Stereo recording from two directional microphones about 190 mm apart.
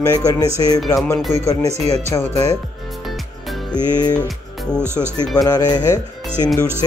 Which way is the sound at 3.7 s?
20° left (ahead or behind).